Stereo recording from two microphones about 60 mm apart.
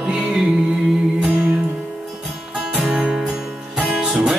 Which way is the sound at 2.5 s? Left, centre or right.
Centre.